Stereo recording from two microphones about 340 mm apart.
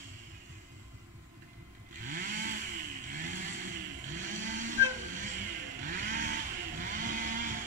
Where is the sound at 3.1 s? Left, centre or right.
Right.